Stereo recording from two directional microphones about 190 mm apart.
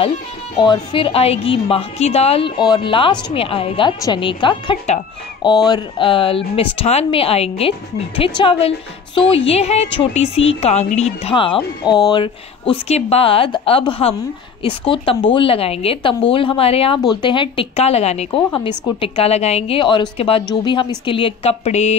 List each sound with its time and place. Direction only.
0.6 s a woman's voice: 25° left (ahead or behind)